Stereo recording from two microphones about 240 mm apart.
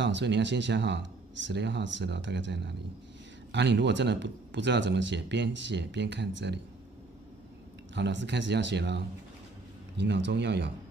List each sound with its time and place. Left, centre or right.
0.0 s speech: right
7.9 s speech: right